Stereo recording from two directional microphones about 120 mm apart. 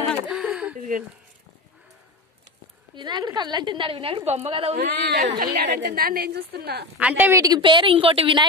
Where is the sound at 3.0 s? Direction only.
35° right (ahead or behind).